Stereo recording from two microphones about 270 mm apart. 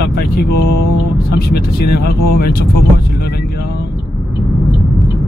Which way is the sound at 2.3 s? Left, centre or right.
Left.